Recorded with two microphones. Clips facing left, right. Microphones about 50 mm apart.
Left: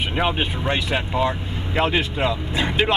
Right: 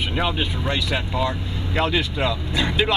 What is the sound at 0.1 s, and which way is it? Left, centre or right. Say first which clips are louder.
Speech: left 3 dB; left.